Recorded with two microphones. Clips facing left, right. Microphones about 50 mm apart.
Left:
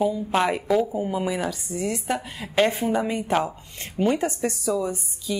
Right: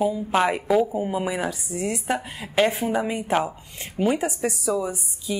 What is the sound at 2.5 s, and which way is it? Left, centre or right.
Speech, centre.